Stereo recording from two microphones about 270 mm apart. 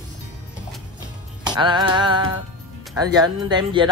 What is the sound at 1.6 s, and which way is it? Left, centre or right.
Speech, centre.